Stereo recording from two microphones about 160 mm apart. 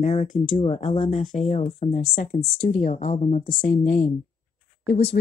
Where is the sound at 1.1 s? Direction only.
50° left (ahead or behind).